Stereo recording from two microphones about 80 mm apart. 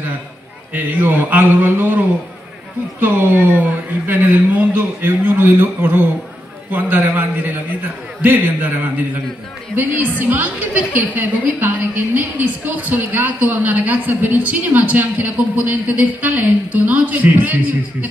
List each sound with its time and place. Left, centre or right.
0.7 s a woman's voice: right